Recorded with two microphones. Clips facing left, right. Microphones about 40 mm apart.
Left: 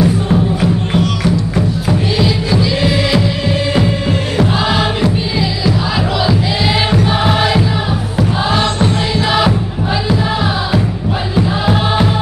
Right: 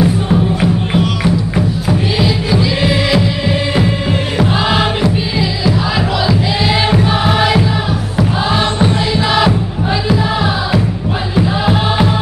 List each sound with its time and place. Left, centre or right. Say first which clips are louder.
0.0 s music: even; centre
7.1 s music: right 1 dB; centre
8.7 s music: right 1 dB; centre
9.3 s music: right 1 dB; centre
11.3 s music: right 1 dB; centre